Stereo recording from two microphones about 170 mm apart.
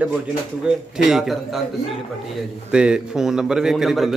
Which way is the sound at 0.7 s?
5° right (ahead or behind).